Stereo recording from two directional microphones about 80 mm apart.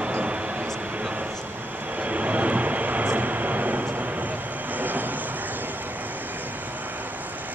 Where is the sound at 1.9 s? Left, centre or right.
Centre.